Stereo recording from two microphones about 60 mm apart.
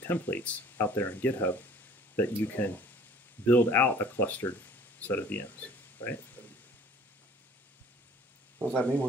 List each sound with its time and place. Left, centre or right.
0.0 s speech: left
5.9 s a sound: left
8.7 s speech: left